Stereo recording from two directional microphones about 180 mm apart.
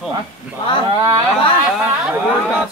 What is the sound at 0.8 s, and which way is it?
Speech, 25° right (ahead or behind).